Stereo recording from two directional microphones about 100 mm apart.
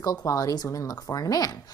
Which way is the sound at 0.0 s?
35° left (ahead or behind).